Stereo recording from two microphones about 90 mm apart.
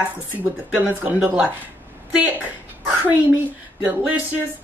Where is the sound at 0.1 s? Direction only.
20° right (ahead or behind).